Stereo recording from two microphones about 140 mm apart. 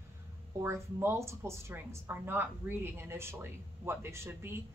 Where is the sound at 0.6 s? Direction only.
20° right (ahead or behind).